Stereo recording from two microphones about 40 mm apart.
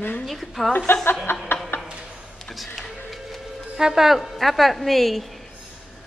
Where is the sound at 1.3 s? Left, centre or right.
Left.